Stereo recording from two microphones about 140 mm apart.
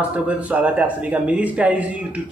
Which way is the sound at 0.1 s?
10° right (ahead or behind).